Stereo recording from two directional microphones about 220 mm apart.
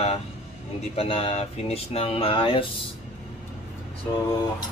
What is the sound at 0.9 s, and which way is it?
Speech, 25° left (ahead or behind).